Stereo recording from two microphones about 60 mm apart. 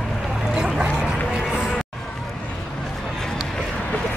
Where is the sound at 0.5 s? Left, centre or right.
Centre.